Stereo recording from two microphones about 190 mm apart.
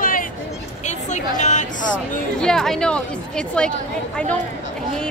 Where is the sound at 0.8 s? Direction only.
40° left (ahead or behind).